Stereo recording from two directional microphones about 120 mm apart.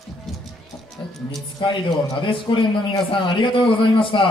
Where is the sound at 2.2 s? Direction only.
45° left (ahead or behind).